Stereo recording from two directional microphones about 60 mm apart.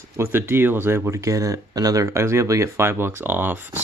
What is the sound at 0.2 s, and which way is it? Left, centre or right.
Speech, right.